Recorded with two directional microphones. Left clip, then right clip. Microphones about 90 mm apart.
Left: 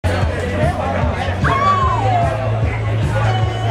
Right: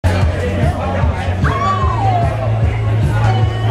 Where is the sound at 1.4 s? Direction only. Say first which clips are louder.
Left 2 dB; 10° left (ahead or behind).